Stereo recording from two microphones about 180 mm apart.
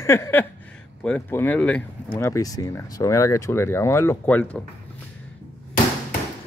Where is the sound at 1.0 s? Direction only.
10° left (ahead or behind).